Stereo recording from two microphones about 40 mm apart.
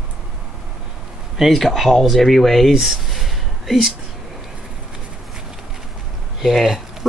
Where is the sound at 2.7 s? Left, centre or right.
Centre.